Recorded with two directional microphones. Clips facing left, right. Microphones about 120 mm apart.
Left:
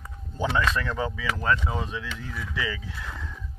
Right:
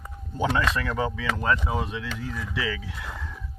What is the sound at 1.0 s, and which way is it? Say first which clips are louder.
Speech: right 1 dB; 20° right (ahead or behind).